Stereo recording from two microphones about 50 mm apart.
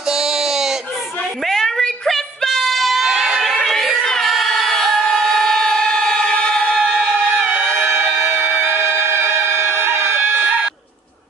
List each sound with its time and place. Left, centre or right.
0.1 s a sound: centre
1.5 s a sound: centre
3.4 s choir: centre
6.9 s music: centre
7.3 s music: right
9.1 s music: right